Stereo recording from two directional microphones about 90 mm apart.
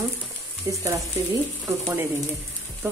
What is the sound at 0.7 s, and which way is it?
Speech, 35° right (ahead or behind).